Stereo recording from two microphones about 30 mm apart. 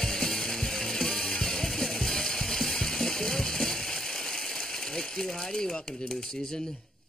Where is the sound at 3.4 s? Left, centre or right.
Centre.